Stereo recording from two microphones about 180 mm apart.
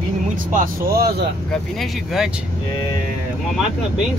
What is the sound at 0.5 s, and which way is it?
Speech, 50° right (ahead or behind).